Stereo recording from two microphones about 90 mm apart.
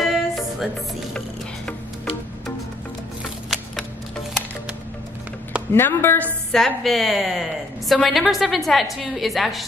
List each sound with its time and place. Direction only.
0.0 s music: centre (ahead or behind)
5.7 s speech: 25° left (ahead or behind)
6.5 s a woman's voice: centre (ahead or behind)